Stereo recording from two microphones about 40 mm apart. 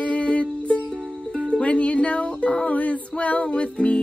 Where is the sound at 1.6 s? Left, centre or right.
Left.